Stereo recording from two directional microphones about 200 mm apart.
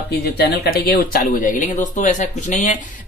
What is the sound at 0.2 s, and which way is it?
Speech, 50° left (ahead or behind).